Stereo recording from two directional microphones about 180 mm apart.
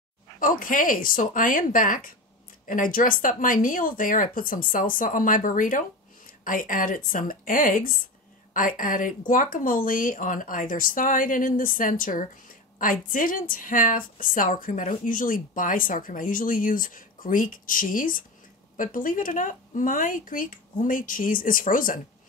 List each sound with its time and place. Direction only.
0.4 s a woman's voice: 50° left (ahead or behind)